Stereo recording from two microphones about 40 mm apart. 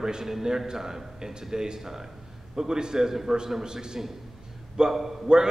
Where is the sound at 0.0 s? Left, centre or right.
Centre.